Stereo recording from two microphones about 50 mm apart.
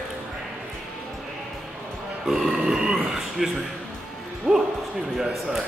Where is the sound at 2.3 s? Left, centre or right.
Centre.